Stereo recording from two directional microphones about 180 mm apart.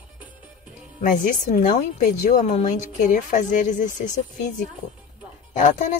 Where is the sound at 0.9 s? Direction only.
45° left (ahead or behind).